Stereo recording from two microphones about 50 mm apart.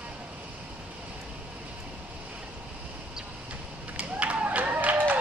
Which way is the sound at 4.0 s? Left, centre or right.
Right.